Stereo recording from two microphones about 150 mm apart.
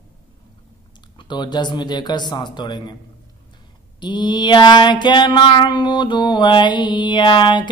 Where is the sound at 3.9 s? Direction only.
30° left (ahead or behind).